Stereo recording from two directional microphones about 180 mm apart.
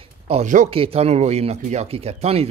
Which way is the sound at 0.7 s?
35° right (ahead or behind).